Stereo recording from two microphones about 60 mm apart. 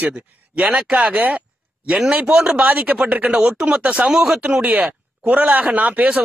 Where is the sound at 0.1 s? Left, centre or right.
Centre.